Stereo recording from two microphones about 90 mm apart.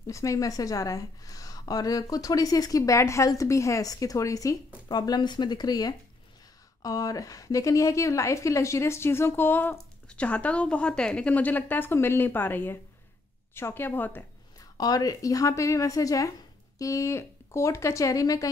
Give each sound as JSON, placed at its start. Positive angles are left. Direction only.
{"t": 0.0, "sound": "a woman's voice", "side_deg": 35}
{"t": 4.8, "sound": "a woman's voice", "side_deg": 50}
{"t": 14.8, "sound": "a woman's voice", "side_deg": 45}